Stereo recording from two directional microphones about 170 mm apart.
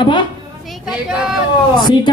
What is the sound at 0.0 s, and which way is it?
Speech, 25° left (ahead or behind).